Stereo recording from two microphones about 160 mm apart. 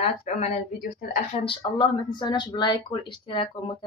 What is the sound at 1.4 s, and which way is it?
A woman's voice, 30° left (ahead or behind).